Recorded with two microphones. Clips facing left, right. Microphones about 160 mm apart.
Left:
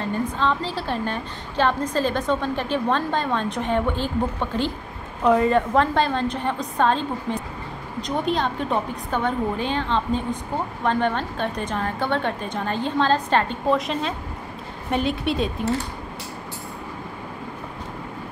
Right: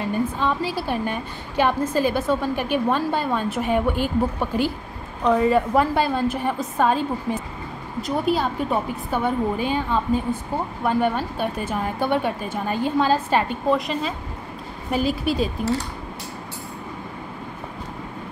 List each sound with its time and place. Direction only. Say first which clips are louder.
0.0 s a woman's voice: right 1 dB; 10° right (ahead or behind)